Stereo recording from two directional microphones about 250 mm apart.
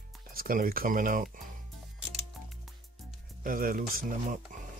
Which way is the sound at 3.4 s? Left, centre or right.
Right.